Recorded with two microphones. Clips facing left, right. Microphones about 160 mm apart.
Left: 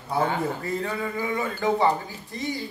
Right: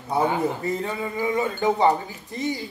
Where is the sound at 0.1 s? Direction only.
20° right (ahead or behind).